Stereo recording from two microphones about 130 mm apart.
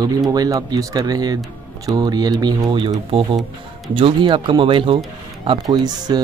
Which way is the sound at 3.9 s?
40° right (ahead or behind).